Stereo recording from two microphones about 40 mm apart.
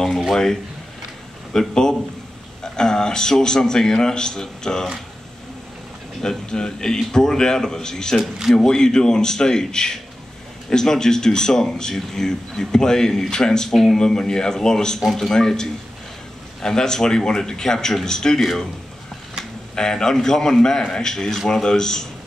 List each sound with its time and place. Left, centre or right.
1.5 s a man's voice: centre
6.2 s a man's voice: centre
19.7 s a man's voice: centre